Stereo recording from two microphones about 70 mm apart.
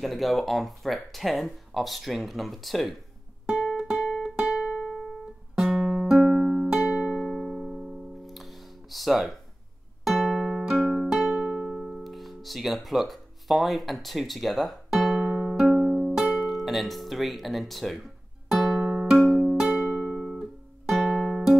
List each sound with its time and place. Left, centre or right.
0.0 s speech: centre
3.4 s music: centre
6.8 s music: centre
7.3 s music: centre
11.2 s music: centre
11.5 s music: centre
11.9 s music: centre
20.3 s guitar: centre